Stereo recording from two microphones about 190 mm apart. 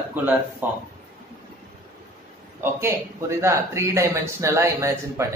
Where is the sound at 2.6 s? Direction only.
15° right (ahead or behind).